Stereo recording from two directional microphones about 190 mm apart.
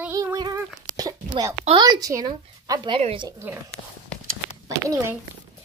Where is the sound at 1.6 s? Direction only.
25° right (ahead or behind).